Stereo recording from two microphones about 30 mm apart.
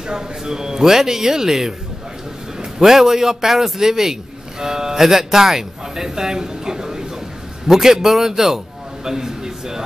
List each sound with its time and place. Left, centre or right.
0.0 s a man's voice: right
2.8 s a man's voice: centre
9.0 s a sound: centre